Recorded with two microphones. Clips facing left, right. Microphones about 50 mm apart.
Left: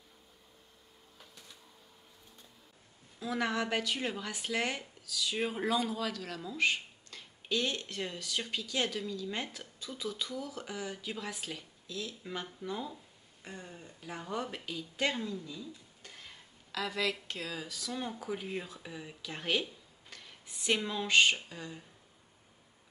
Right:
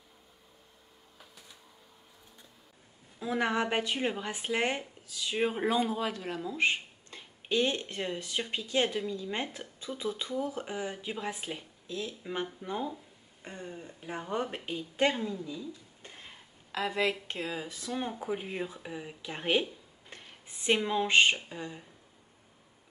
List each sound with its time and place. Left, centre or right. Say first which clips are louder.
1.1 s printer: right 1 dB; centre
3.2 s speech: right 3 dB; right